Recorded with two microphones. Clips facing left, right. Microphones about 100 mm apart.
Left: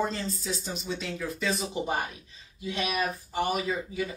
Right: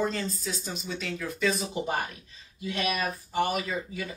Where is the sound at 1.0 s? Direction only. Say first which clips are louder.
Right 3 dB; 15° left (ahead or behind).